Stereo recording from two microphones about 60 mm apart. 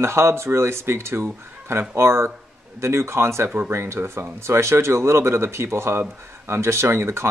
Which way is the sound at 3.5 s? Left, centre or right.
Right.